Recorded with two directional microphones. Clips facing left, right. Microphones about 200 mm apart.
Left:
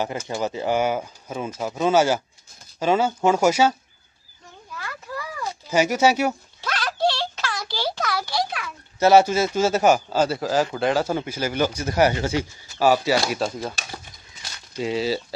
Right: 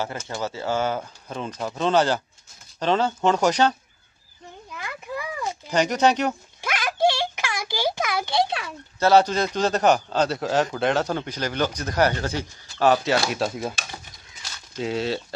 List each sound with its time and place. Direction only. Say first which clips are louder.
0.0 s speech: left 3 dB; 15° left (ahead or behind)
4.7 s a sound: right 1 dB; 20° right (ahead or behind)
5.7 s speech: left 1 dB; 5° left (ahead or behind)
6.6 s a sound: right 1 dB; 10° right (ahead or behind); by 8.7 s 25° right (ahead or behind)
9.0 s a man's voice: left 2 dB; 10° left (ahead or behind)
14.8 s a man's voice: left 2 dB; centre (ahead or behind)